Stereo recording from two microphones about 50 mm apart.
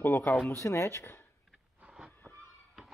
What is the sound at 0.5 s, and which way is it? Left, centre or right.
Speech, left.